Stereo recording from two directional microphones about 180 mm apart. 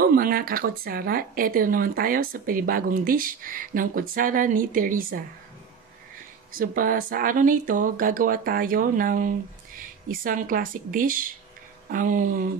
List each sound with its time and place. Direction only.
0.0 s speech: 55° right (ahead or behind)
6.5 s speech: 50° right (ahead or behind)